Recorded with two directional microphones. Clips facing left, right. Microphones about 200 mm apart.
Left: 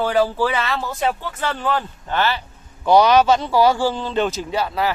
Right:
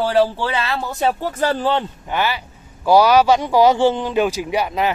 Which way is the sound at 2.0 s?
10° right (ahead or behind).